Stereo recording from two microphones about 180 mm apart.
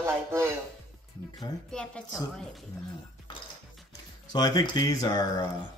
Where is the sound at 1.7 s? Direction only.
5° left (ahead or behind).